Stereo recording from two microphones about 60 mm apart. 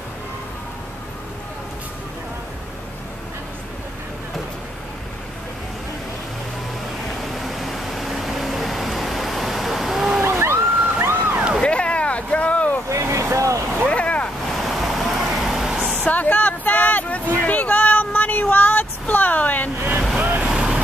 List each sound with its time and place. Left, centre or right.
7.3 s a sound: centre
10.2 s vehicle: right
11.6 s boat: centre
12.9 s vehicle: right
13.8 s vehicle: centre
14.6 s vehicle: centre
16.0 s a sound: left
20.2 s vehicle: right
20.4 s vehicle: centre